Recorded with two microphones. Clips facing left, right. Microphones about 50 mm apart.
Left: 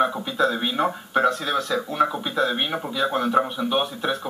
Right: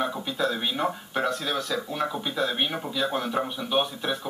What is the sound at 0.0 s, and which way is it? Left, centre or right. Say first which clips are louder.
A woman's voice: left 6 dB; centre.